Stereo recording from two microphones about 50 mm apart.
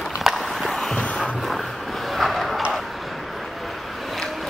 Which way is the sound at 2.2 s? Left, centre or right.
Centre.